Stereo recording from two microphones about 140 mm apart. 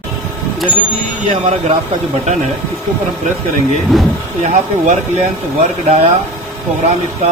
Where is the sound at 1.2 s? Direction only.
50° right (ahead or behind).